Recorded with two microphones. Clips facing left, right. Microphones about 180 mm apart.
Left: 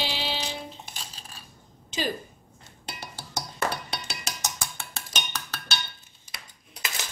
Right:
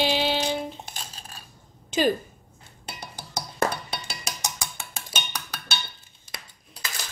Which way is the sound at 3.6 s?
40° right (ahead or behind).